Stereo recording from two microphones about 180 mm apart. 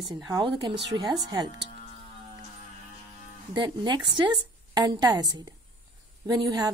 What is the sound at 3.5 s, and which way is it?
A woman's voice, 25° right (ahead or behind).